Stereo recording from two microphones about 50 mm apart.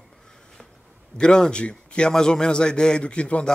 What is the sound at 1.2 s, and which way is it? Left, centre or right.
Speech, centre.